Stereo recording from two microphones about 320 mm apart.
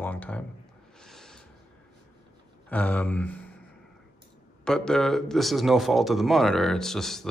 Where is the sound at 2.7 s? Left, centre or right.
Centre.